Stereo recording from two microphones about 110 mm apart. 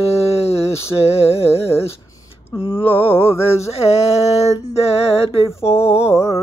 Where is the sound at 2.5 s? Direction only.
55° left (ahead or behind).